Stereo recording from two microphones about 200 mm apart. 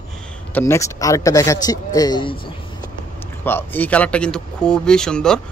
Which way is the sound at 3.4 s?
10° left (ahead or behind).